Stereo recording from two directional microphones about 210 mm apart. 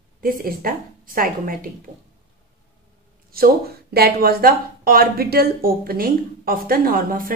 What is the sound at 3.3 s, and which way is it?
Speech, 45° right (ahead or behind).